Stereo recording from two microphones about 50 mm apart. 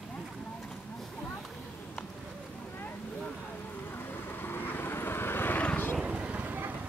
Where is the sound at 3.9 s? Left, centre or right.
Left.